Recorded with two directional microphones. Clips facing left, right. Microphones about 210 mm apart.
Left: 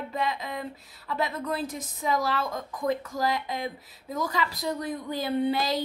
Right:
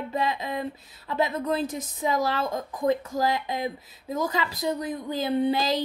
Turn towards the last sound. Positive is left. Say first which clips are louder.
# right 2 dB
turn(degrees=-20)  # may be behind; listen again after turning